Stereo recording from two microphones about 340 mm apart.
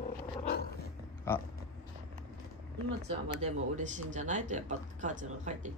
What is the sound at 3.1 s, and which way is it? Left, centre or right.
Speech, centre.